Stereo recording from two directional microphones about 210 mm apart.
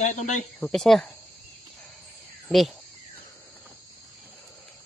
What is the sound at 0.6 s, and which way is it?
Speech, centre (ahead or behind).